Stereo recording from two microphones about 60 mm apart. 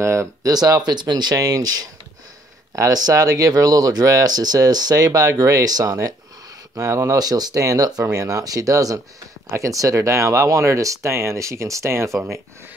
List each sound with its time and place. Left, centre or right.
0.0 s speech: right
0.4 s speech: right
2.7 s speech: right
6.7 s speech: right
8.0 s speech: right